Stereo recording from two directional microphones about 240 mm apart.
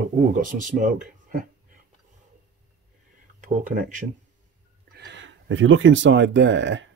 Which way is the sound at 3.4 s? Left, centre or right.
Right.